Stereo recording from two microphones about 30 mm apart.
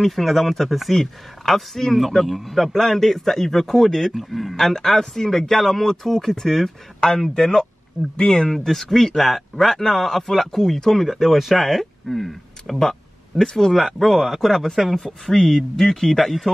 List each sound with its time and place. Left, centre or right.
0.0 s a man's voice: centre
4.1 s speech: centre
4.6 s a man's voice: centre
8.5 s a man's voice: centre
11.6 s speech: centre
13.4 s a man's voice: centre
15.0 s a man's voice: centre